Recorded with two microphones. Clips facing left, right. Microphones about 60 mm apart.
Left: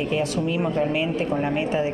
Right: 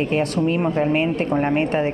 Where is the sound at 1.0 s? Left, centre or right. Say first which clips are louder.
Right 3 dB; right.